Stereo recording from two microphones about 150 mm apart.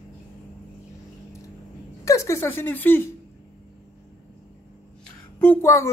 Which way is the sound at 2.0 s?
20° left (ahead or behind).